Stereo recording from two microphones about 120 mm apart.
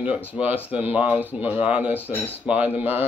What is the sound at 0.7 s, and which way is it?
Speech, 15° right (ahead or behind).